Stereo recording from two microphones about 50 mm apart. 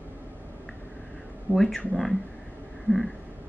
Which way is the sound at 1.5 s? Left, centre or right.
Centre.